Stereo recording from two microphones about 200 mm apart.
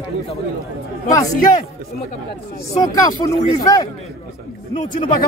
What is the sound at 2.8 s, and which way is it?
Speech, 15° left (ahead or behind).